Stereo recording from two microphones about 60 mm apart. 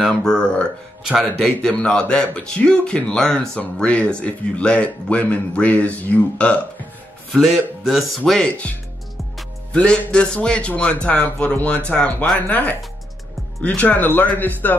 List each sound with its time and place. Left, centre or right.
0.1 s music: centre
1.7 s music: centre
3.1 s speech: centre
7.3 s a man's voice: centre
8.3 s speech: centre
9.7 s music: left
10.8 s speech: centre